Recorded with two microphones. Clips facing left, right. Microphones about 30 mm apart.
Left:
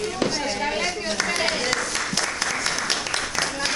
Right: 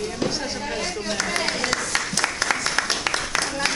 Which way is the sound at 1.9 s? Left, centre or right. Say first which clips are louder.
Right 2 dB; right.